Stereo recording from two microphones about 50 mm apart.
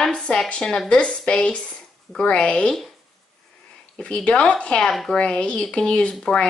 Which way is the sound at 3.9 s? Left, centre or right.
Left.